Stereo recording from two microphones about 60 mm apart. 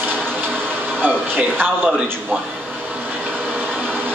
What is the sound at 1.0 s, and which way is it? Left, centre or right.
Music, right.